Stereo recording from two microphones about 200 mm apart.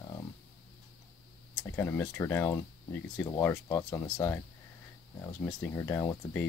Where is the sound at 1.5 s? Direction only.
10° left (ahead or behind).